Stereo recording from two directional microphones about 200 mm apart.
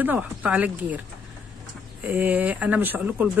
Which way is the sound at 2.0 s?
10° right (ahead or behind).